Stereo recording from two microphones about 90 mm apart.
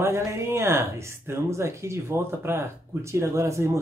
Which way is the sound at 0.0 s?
30° right (ahead or behind).